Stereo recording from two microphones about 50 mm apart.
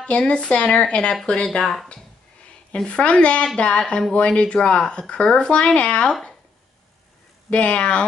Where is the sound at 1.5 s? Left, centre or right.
Centre.